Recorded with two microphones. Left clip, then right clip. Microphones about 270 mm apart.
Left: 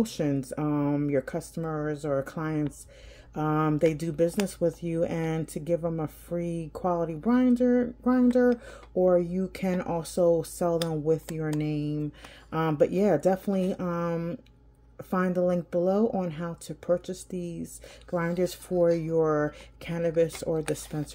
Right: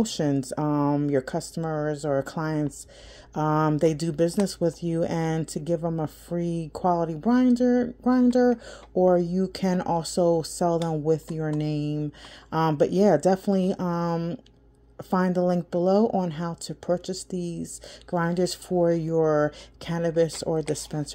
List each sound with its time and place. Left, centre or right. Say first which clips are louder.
0.0 s speech: right 3 dB; centre
3.6 s speech: right 2 dB; centre
11.7 s speech: right 2 dB; centre
12.7 s speech: right 2 dB; centre
15.7 s speech: right 3 dB; centre